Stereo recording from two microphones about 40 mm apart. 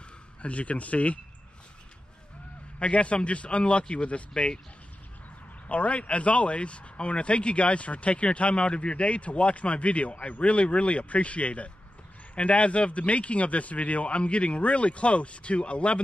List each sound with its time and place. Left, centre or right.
0.4 s speech: left
2.8 s speech: left
5.7 s speech: left